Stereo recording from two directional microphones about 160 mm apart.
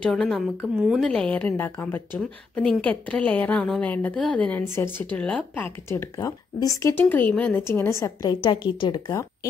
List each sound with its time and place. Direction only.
0.0 s a woman's voice: centre (ahead or behind)
8.0 s a woman's voice: 25° left (ahead or behind)